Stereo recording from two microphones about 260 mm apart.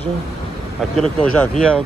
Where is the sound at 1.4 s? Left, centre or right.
Centre.